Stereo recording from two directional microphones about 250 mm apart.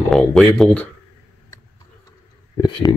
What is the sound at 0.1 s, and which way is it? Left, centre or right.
Speech, centre.